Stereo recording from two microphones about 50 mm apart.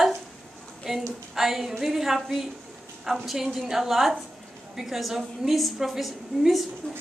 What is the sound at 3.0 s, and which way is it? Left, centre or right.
A woman's voice, centre.